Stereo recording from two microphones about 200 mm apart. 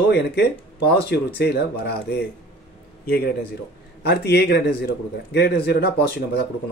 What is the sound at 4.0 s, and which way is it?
A man's voice, 55° left (ahead or behind).